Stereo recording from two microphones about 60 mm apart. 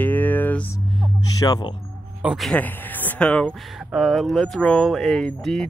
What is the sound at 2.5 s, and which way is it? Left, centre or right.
Speech, left.